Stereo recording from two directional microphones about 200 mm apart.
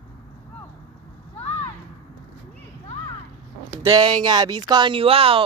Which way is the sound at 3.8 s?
20° right (ahead or behind).